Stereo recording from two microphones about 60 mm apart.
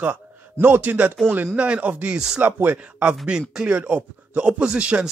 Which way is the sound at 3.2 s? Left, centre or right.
Centre.